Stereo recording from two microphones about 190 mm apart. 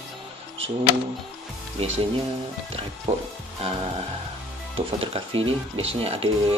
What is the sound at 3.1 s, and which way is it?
Speech, 35° right (ahead or behind).